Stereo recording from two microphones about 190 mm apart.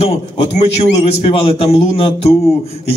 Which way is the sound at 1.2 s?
30° left (ahead or behind).